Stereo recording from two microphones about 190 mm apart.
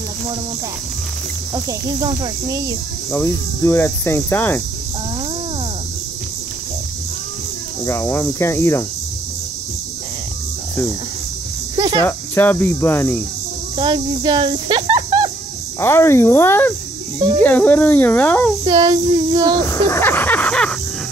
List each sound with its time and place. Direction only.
1.5 s speech: 20° right (ahead or behind)
3.1 s speech: 10° left (ahead or behind)
7.8 s speech: 15° left (ahead or behind)
11.7 s cricket: 25° right (ahead or behind)
12.0 s speech: 10° left (ahead or behind)
13.7 s speech: 25° right (ahead or behind)
15.8 s speech: 15° left (ahead or behind)
18.7 s speech: 25° right (ahead or behind)
19.7 s a sound: 15° left (ahead or behind)